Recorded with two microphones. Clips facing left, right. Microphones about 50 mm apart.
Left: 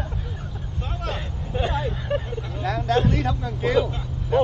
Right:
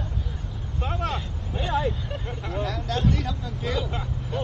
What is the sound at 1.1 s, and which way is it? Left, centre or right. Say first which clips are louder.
Vehicle: left 2 dB; centre.